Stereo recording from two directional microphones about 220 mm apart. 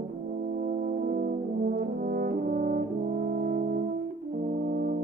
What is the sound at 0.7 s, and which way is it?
Brass instrument, 40° right (ahead or behind).